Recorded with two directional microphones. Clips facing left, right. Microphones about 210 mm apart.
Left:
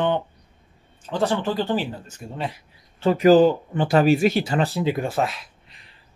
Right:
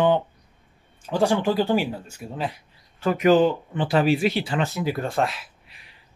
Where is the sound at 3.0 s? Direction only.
35° left (ahead or behind).